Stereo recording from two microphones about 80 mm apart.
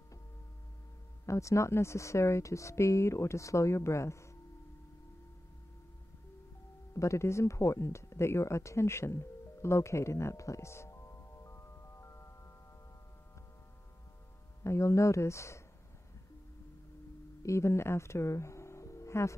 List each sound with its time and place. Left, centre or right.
1.2 s speech: left
6.9 s speech: left
14.6 s speech: left
17.4 s speech: left